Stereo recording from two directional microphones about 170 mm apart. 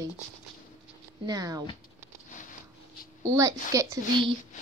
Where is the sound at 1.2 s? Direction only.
20° right (ahead or behind).